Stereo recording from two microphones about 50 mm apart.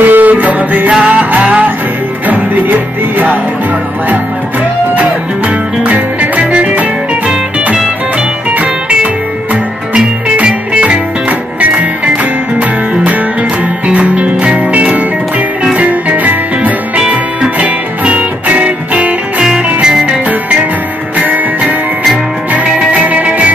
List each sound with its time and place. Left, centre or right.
0.0 s music: right
5.9 s music: right
19.4 s music: centre
22.1 s music: right